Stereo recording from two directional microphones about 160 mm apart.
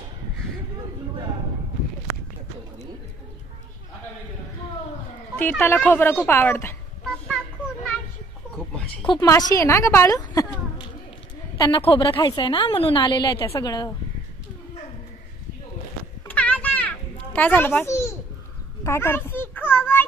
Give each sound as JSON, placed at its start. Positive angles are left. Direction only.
{"t": 5.3, "sound": "a woman's voice", "side_deg": 10}
{"t": 9.0, "sound": "speech", "side_deg": 30}
{"t": 9.3, "sound": "a woman's voice", "side_deg": 20}
{"t": 16.3, "sound": "children playing", "side_deg": 10}
{"t": 18.9, "sound": "a sound", "side_deg": 15}